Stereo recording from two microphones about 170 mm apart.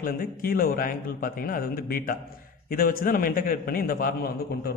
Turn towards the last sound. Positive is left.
turn(degrees=60)  # may be behind; listen again after turning